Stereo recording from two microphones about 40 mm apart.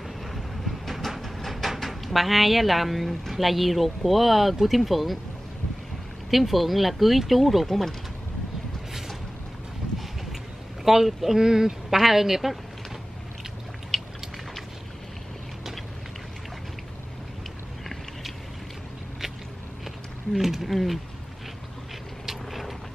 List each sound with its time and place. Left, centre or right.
0.3 s a sound: centre
6.3 s speech: centre
9.8 s boat: right
10.8 s a man's voice: centre
13.9 s a sound: centre
20.3 s speech: centre
22.2 s vehicle: centre